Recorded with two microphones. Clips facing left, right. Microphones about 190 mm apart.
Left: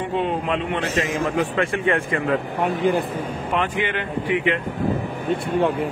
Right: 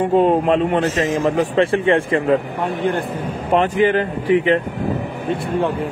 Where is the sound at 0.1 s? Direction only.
40° right (ahead or behind).